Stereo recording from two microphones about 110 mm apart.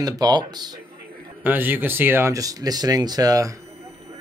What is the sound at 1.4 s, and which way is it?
Speech, 15° right (ahead or behind).